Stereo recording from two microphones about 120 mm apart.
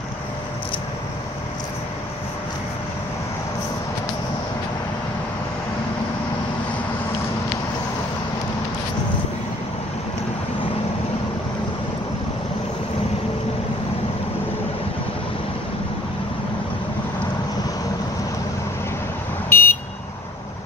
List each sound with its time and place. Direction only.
19.5 s vehicle: 20° left (ahead or behind)